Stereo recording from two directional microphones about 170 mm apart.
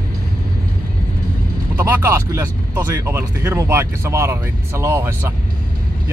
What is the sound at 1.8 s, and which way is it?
Speech, 10° right (ahead or behind).